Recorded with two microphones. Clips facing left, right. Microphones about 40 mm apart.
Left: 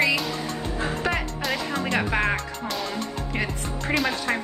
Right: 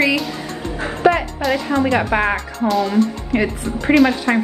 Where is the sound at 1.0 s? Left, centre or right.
Centre.